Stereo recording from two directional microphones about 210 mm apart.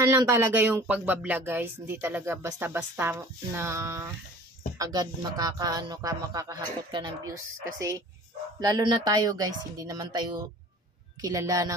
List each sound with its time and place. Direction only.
0.0 s speech: 10° right (ahead or behind)
8.5 s speech: 20° right (ahead or behind)